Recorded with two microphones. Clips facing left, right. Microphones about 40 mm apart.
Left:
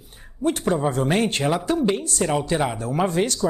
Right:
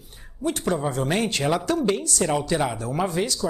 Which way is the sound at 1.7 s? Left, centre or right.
Left.